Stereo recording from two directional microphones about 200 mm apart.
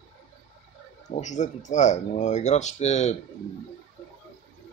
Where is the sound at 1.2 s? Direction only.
35° left (ahead or behind).